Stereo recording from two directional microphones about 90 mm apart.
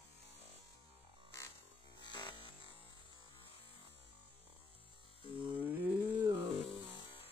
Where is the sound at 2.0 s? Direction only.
60° left (ahead or behind); by 3.8 s 85° left.